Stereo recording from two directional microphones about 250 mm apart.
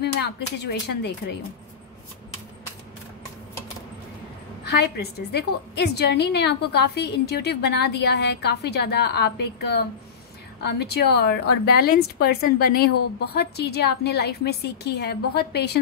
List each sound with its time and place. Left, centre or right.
0.0 s speech: left
4.6 s a woman's voice: left